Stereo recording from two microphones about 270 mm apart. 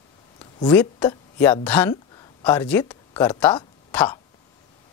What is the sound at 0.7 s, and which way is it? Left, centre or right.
Speech, centre.